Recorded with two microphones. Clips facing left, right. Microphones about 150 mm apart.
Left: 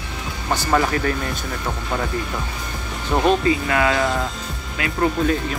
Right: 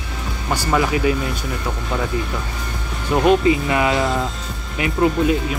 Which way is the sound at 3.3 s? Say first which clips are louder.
Right 3 dB; 20° right (ahead or behind).